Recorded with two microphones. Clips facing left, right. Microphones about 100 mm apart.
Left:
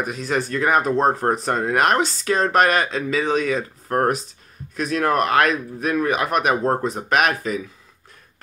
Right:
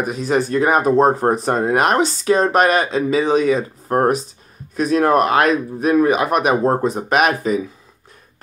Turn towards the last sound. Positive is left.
turn(degrees=-20)  # may be behind; listen again after turning